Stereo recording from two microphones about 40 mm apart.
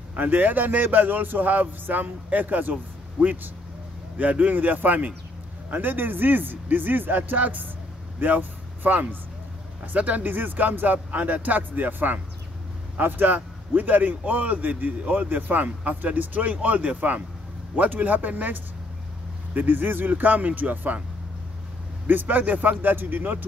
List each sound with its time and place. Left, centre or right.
0.1 s a man's voice: right
22.0 s a man's voice: right